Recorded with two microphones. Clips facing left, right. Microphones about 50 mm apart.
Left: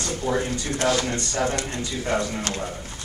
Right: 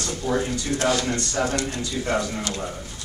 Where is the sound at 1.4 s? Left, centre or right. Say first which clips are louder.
Left 1 dB; centre.